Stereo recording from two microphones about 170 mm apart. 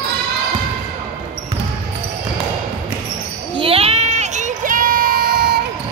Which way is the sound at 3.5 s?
35° right (ahead or behind).